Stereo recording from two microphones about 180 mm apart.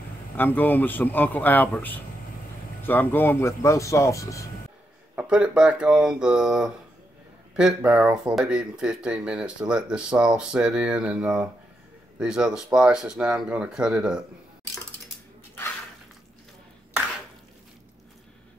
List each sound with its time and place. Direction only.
0.4 s speech: 10° left (ahead or behind)
5.1 s speech: 5° right (ahead or behind)